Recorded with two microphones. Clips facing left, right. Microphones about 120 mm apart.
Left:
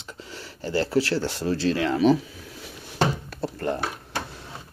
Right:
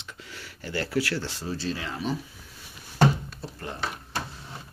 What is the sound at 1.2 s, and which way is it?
Speech, 65° left (ahead or behind).